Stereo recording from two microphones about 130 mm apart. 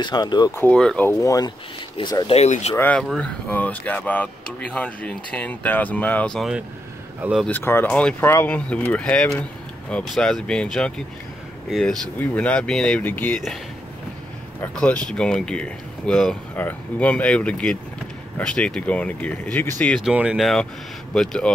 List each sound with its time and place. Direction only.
0.0 s speech: 35° left (ahead or behind)
0.6 s speech: 10° left (ahead or behind)
1.0 s speech: 25° left (ahead or behind)
2.0 s speech: 40° left (ahead or behind)
2.3 s speech: 60° left (ahead or behind)
2.7 s speech: 15° left (ahead or behind)
3.0 s speech: 5° left (ahead or behind)
7.2 s speech: 10° right (ahead or behind)
7.4 s speech: 15° left (ahead or behind)
8.2 s speech: 20° left (ahead or behind)
13.0 s speech: 15° left (ahead or behind)
14.6 s speech: 10° left (ahead or behind)
19.9 s speech: 5° right (ahead or behind)